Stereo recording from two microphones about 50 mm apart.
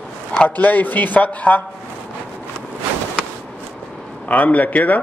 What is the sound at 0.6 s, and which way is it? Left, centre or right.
Speech, left.